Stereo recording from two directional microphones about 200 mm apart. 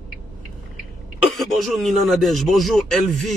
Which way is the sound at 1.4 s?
Centre (ahead or behind).